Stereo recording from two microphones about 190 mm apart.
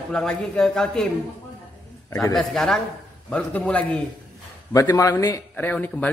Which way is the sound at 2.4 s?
Centre (ahead or behind).